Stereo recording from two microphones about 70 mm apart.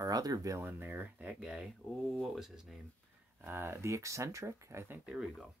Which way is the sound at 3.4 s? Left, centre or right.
Right.